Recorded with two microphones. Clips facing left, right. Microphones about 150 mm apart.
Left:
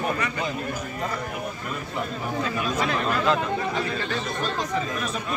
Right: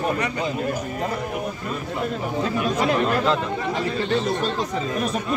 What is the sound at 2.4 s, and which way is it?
Speech, 40° right (ahead or behind).